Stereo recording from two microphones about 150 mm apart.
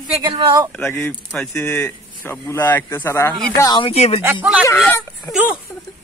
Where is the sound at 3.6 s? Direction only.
30° left (ahead or behind).